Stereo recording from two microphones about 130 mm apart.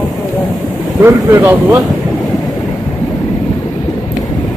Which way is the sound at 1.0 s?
20° right (ahead or behind).